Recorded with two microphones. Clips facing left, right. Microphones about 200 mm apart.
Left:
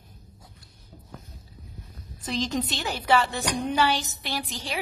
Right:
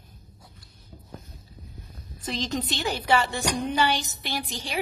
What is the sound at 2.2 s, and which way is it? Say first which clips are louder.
A woman's voice: left 2 dB; 5° left (ahead or behind).